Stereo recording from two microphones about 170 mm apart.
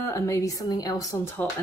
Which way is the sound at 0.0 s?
15° left (ahead or behind).